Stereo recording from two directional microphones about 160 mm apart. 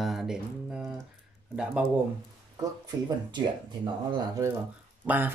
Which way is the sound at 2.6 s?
25° right (ahead or behind).